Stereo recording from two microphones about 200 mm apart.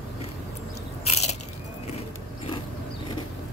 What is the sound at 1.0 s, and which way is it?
Biting, 35° left (ahead or behind).